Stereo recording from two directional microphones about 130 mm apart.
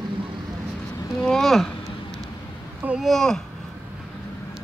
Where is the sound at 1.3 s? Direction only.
5° left (ahead or behind).